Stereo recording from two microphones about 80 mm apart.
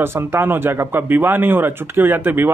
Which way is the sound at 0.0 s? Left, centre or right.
Right.